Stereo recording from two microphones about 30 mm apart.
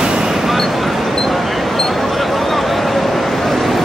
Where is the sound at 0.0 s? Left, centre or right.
Right.